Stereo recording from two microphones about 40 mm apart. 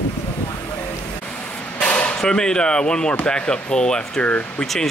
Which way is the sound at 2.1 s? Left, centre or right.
Centre.